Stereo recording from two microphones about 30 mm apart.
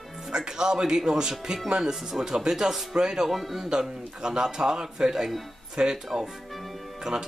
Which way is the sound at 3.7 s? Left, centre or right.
Right.